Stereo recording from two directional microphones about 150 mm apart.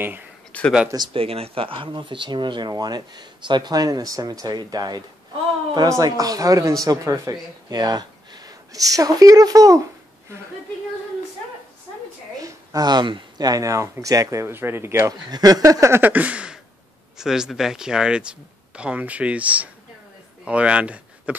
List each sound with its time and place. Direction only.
0.5 s speech: 10° left (ahead or behind)
0.8 s speech: 30° right (ahead or behind)
12.4 s speech: 25° right (ahead or behind); by 21.4 s 10° right (ahead or behind)